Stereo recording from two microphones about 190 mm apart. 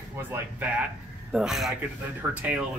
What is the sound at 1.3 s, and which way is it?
A woman's voice, 5° right (ahead or behind).